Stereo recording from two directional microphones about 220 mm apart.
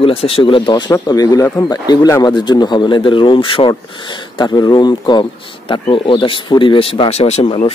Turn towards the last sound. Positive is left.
turn(degrees=25)  # may be behind; listen again after turning